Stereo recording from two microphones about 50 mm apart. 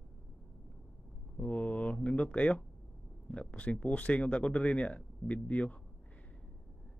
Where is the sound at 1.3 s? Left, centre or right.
Left.